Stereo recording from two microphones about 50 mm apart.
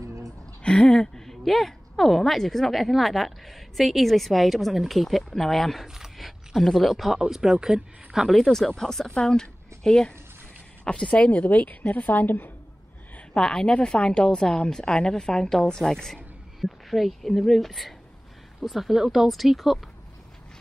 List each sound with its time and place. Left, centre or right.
0.0 s a sound: right
0.6 s a sound: centre
1.4 s a woman's voice: centre
5.9 s speech: centre
8.4 s a woman's voice: centre; by 12.4 s left
13.3 s a woman's voice: centre